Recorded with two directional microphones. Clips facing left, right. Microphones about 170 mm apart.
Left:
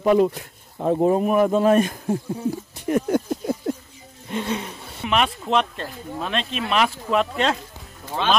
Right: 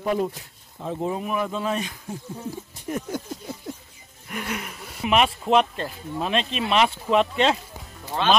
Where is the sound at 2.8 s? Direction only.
65° left (ahead or behind).